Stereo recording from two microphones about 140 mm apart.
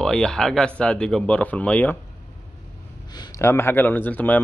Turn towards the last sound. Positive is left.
turn(degrees=10)  # may be behind; listen again after turning